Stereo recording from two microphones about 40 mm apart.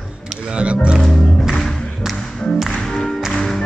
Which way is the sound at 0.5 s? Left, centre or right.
Right.